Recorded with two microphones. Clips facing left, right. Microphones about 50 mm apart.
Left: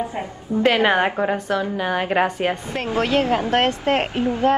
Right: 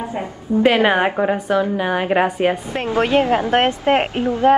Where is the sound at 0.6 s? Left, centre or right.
Centre.